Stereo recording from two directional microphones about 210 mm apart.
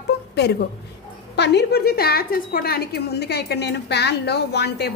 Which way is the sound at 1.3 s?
55° left (ahead or behind).